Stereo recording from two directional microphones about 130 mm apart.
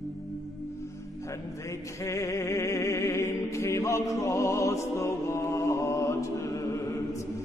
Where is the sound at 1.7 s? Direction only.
25° left (ahead or behind).